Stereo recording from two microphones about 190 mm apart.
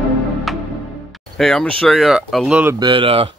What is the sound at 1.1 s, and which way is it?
Speech, centre (ahead or behind).